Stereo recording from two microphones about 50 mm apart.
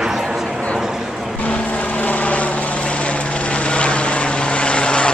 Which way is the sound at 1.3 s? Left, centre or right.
Left.